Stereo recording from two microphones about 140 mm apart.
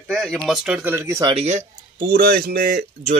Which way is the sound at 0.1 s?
Centre (ahead or behind).